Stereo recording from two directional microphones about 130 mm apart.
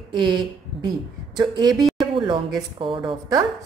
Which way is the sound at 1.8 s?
Centre (ahead or behind).